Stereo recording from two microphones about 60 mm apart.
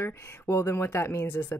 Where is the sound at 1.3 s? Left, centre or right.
Left.